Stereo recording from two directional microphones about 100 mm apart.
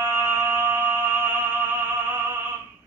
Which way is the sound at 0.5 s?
20° right (ahead or behind).